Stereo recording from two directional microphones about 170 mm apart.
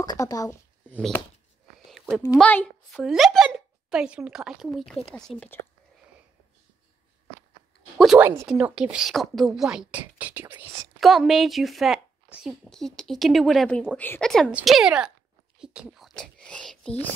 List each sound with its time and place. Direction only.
0.0 s speech: 20° left (ahead or behind)
1.9 s a sound: centre (ahead or behind)
2.3 s a woman's voice: 5° left (ahead or behind)
8.2 s a woman's voice: 15° right (ahead or behind); by 17.1 s 5° left (ahead or behind)